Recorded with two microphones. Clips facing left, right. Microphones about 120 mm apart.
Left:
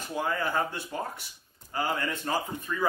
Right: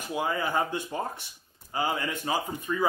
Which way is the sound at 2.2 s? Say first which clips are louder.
Right 1 dB; 5° right (ahead or behind).